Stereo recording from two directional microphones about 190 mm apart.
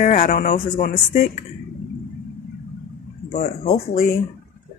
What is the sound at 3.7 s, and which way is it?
Speech, 55° left (ahead or behind).